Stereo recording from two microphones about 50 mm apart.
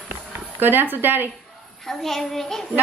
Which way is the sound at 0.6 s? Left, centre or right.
Right.